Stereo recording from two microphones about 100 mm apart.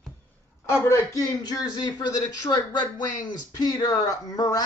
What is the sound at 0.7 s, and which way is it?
Speech, 30° left (ahead or behind).